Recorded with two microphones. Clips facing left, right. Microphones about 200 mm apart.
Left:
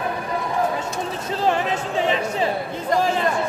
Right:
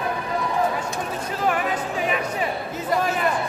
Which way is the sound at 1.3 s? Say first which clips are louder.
Left 3 dB; 25° left (ahead or behind).